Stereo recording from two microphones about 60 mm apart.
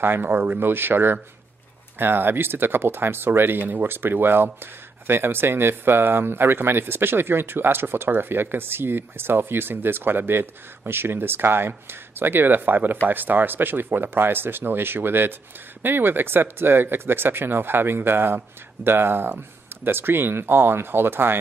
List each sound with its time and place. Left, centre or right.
0.0 s speech: right